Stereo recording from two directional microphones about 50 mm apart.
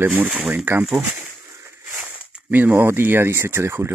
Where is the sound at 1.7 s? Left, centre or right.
Right.